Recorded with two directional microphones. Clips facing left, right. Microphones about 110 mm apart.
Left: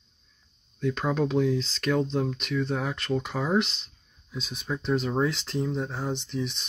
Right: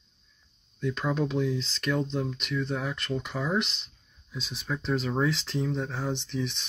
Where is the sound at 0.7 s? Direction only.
45° left (ahead or behind).